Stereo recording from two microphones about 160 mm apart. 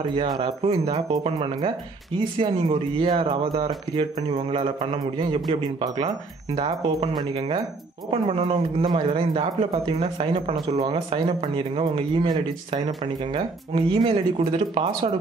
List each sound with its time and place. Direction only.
0.4 s speech: 40° right (ahead or behind)